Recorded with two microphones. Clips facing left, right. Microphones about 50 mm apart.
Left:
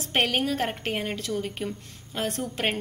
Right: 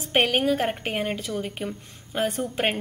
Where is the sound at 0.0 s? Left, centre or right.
Centre.